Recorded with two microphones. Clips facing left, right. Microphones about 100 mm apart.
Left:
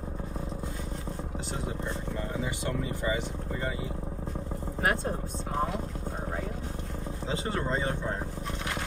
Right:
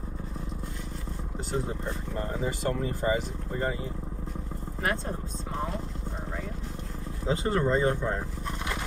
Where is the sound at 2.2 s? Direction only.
40° right (ahead or behind).